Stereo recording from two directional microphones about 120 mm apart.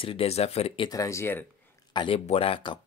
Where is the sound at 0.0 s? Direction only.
50° left (ahead or behind).